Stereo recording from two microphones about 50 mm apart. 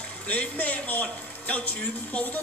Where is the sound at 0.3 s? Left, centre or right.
Left.